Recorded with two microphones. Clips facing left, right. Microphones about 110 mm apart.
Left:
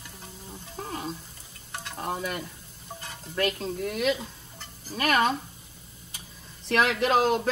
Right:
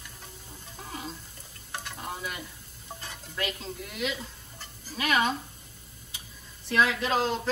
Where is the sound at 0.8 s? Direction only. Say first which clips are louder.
Left 5 dB; 45° left (ahead or behind).